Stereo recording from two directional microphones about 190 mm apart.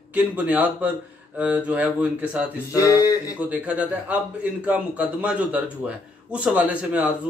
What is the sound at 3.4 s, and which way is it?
A man's voice, 10° right (ahead or behind).